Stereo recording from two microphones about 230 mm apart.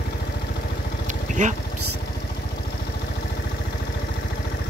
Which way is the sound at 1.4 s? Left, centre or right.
Right.